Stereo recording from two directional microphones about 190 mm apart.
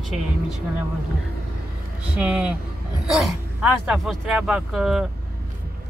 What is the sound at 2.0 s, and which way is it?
Speech, 5° right (ahead or behind).